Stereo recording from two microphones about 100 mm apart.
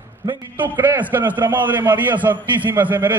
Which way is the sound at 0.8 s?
25° right (ahead or behind).